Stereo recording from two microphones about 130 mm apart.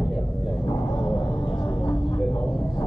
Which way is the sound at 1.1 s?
40° left (ahead or behind).